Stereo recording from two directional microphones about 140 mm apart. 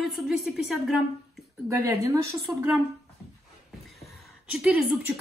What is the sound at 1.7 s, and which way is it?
Speech, 20° right (ahead or behind).